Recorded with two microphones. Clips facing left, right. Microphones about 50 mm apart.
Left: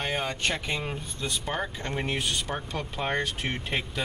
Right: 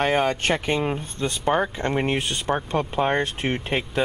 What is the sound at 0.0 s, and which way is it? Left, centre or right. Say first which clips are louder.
Speech: right 8 dB; right.